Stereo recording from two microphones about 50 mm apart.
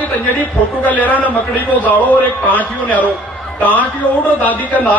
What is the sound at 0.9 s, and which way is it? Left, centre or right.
A man's voice, left.